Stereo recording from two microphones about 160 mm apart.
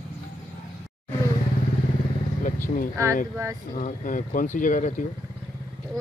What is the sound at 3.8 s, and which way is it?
Speech, 55° left (ahead or behind).